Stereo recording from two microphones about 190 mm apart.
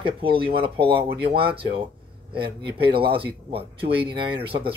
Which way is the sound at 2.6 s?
25° right (ahead or behind).